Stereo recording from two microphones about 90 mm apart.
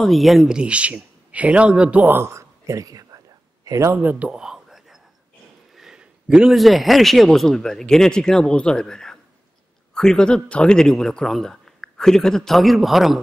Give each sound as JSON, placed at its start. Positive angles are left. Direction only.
{"t": 0.0, "sound": "a man's voice", "side_deg": 0}
{"t": 3.9, "sound": "a sound", "side_deg": -20}
{"t": 5.8, "sound": "a man's voice", "side_deg": -5}